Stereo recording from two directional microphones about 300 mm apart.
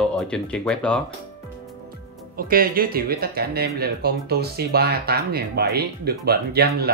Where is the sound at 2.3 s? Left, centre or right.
Right.